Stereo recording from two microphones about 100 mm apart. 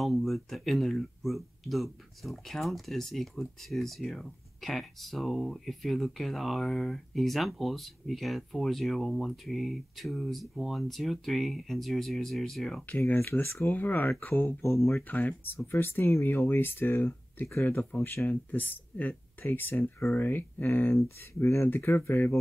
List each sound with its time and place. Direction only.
0.0 s speech: centre (ahead or behind)
12.8 s speech: 20° left (ahead or behind)
15.0 s speech: 15° left (ahead or behind)